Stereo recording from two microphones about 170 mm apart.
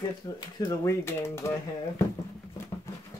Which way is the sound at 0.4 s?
25° left (ahead or behind).